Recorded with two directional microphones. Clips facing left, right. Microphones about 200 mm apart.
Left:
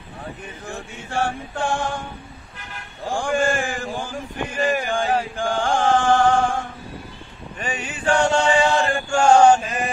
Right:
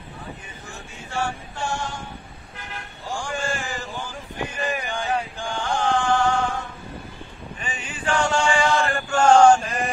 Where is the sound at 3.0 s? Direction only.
50° left (ahead or behind).